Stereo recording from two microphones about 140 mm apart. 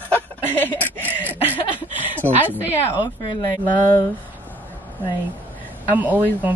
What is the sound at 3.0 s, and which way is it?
Speech, 35° left (ahead or behind).